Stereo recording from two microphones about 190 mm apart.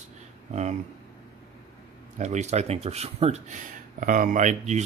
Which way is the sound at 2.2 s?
35° right (ahead or behind).